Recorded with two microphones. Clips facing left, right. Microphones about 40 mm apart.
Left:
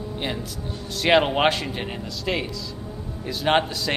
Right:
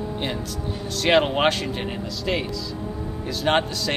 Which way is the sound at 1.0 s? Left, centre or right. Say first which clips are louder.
Even; centre.